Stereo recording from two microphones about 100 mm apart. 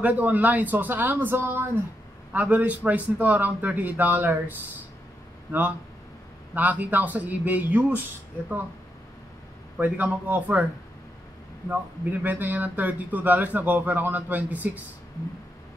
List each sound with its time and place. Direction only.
0.0 s speech: 15° right (ahead or behind)
6.5 s speech: 15° right (ahead or behind)
9.8 s speech: 15° right (ahead or behind)
11.7 s speech: 20° right (ahead or behind)